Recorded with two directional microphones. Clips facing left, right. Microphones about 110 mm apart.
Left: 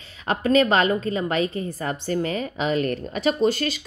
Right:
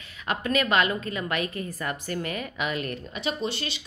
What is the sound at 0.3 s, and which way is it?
A woman's voice, 35° left (ahead or behind).